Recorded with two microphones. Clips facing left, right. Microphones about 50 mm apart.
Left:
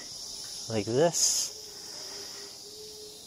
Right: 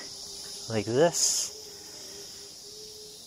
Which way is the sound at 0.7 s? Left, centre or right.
Right.